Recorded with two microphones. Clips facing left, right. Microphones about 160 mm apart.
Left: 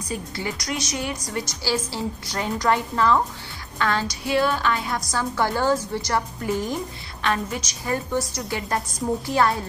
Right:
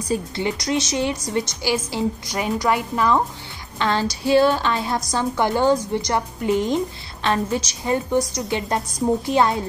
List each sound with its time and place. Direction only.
0.1 s a woman's voice: 25° right (ahead or behind)
3.8 s a woman's voice: 30° right (ahead or behind)